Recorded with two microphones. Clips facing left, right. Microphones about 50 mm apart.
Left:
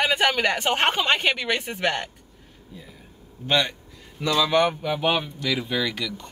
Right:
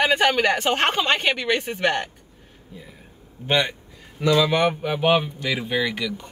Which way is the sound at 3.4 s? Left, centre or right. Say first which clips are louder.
Right 1 dB; centre.